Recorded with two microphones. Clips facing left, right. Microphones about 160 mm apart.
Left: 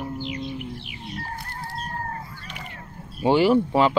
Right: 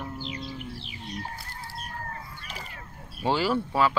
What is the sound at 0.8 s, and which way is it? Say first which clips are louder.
Music: left 2 dB; 30° right (ahead or behind).